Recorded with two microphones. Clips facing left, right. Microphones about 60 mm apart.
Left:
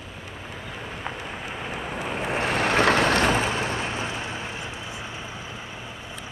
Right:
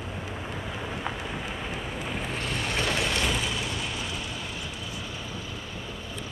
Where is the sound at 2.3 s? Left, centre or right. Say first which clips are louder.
Left 10 dB; left.